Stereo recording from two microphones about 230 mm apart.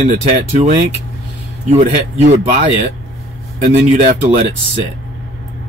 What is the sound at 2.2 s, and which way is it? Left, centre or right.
Speech, right.